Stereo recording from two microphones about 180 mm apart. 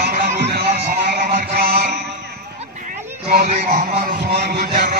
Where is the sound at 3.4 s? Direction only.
40° right (ahead or behind).